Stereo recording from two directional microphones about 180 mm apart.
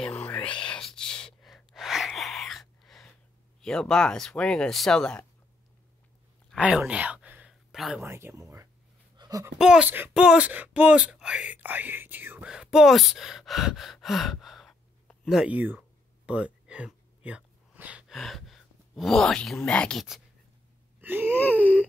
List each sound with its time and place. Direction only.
0.0 s gasp: 5° left (ahead or behind)
3.6 s speech: 5° left (ahead or behind)
6.5 s a sound: 5° right (ahead or behind)
8.0 s speech: 15° right (ahead or behind)
9.1 s a sound: 20° right (ahead or behind)
9.6 s speech: 5° right (ahead or behind)
16.3 s a sound: 5° right (ahead or behind)
21.0 s wheeze: 10° right (ahead or behind)
21.4 s speech: 10° left (ahead or behind)